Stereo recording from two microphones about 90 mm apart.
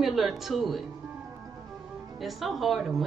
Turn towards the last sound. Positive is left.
turn(degrees=0)  # may be behind; listen again after turning